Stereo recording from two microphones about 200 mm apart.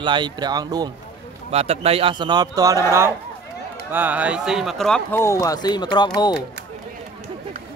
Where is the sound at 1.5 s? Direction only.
30° right (ahead or behind).